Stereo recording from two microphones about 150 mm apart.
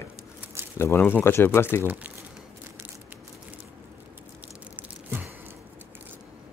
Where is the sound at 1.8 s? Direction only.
15° right (ahead or behind).